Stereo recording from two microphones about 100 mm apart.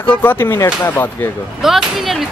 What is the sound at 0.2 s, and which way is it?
Speech, 20° left (ahead or behind).